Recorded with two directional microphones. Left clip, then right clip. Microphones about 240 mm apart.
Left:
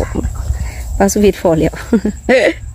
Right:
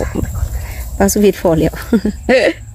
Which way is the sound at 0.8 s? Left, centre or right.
Centre.